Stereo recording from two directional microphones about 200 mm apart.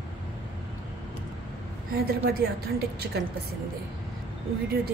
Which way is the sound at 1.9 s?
50° right (ahead or behind).